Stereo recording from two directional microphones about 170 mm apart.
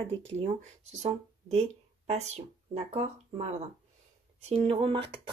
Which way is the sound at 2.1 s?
40° right (ahead or behind).